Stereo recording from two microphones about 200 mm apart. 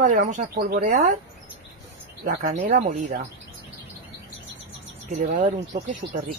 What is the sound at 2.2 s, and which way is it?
Speech, 45° right (ahead or behind).